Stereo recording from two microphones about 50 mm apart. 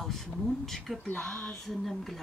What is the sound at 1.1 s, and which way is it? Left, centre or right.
Speech, centre.